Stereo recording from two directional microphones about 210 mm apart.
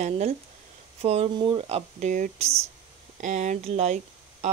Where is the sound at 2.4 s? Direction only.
15° right (ahead or behind).